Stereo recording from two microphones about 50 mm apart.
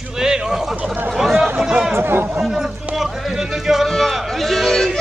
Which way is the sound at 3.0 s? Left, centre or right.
Centre.